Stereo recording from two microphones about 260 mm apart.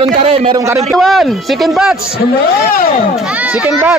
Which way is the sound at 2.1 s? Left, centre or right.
Left.